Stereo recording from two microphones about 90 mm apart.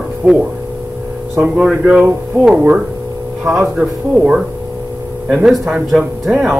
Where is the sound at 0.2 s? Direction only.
10° right (ahead or behind).